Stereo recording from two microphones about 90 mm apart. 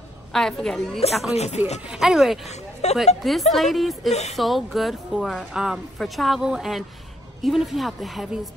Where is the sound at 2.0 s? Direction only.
5° right (ahead or behind).